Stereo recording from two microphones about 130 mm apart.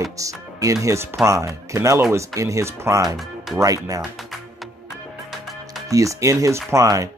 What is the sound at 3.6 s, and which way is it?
Speech, 25° right (ahead or behind).